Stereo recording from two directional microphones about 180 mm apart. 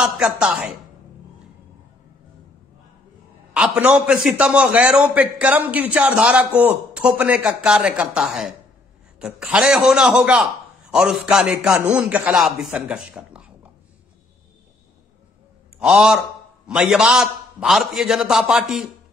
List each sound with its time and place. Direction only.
0.0 s a man's voice: 5° right (ahead or behind)
3.5 s a man's voice: 5° right (ahead or behind)
15.8 s a man's voice: 5° right (ahead or behind)